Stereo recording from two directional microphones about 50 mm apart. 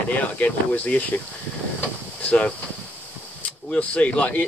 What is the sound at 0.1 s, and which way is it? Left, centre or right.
Speech, left.